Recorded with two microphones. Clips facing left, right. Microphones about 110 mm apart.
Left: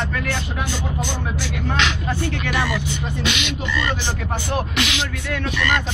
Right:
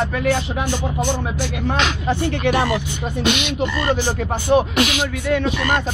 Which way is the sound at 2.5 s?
45° right (ahead or behind).